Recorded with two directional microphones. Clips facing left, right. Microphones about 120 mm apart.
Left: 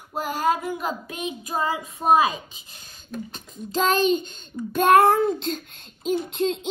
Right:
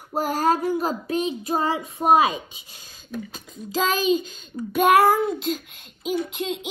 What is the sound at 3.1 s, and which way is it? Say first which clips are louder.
Child singing: right 1 dB; 5° right (ahead or behind).